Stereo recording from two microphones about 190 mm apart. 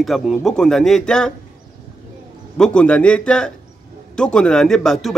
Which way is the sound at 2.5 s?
5° left (ahead or behind).